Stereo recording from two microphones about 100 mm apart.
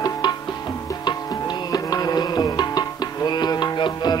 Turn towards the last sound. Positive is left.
turn(degrees=50)  # may be behind; listen again after turning